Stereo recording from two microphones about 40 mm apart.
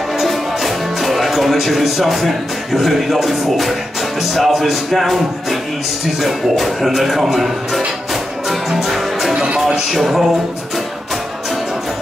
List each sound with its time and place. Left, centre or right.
0.2 s music: centre
4.2 s speech: centre
8.5 s music: centre
9.3 s music: right
9.9 s speech: centre